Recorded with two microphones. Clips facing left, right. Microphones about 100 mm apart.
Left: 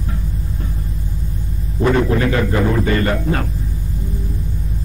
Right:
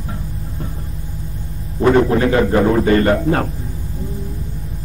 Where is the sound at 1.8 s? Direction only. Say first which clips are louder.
Right 3 dB; 30° right (ahead or behind).